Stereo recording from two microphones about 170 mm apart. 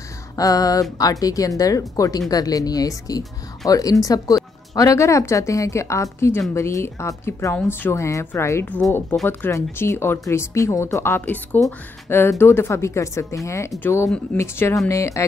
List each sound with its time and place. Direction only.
0.4 s a woman's voice: 20° left (ahead or behind)